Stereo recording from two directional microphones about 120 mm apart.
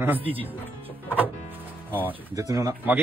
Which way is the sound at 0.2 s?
50° right (ahead or behind).